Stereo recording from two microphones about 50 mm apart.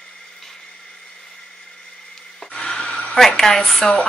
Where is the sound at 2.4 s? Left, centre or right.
Centre.